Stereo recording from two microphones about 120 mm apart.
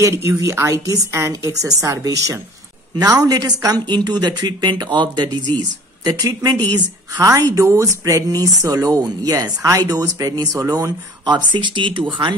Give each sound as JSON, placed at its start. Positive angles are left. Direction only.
{"t": 0.0, "sound": "a woman's voice", "side_deg": -25}